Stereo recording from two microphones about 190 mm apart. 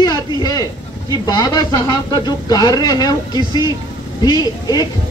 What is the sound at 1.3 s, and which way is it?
Speech, 20° left (ahead or behind).